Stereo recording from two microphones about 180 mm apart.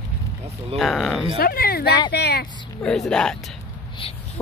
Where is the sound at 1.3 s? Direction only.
55° left (ahead or behind).